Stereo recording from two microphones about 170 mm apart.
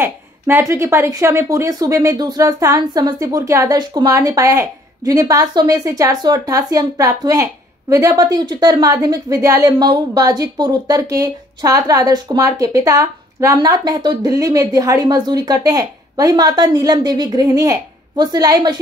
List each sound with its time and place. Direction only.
0.0 s a woman's voice: 15° right (ahead or behind)